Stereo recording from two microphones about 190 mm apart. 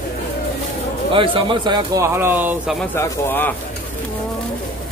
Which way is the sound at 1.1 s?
25° right (ahead or behind).